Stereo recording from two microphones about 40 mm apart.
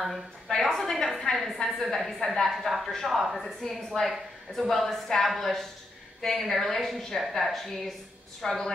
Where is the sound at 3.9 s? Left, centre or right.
Left.